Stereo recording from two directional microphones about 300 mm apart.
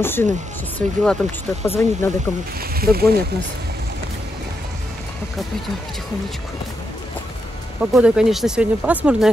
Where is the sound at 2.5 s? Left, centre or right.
Right.